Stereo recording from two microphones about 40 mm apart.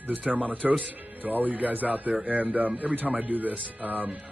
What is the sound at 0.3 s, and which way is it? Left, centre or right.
Speech, right.